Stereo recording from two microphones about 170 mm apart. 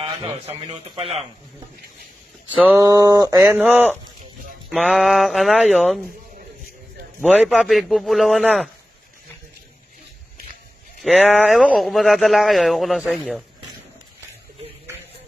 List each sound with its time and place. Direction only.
0.0 s a man's voice: 35° right (ahead or behind)
2.5 s a sound: 10° right (ahead or behind)
2.8 s speech: 20° right (ahead or behind)
4.6 s speech: centre (ahead or behind)
7.2 s speech: 5° right (ahead or behind)
11.0 s speech: centre (ahead or behind)